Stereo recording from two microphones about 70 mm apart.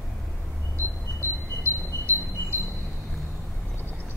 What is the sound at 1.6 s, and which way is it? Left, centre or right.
Wind chime, left.